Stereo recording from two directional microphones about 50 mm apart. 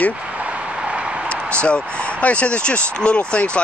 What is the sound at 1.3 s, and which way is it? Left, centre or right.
Speech, left.